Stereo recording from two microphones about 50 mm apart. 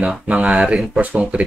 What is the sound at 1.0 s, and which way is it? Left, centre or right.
Speech, right.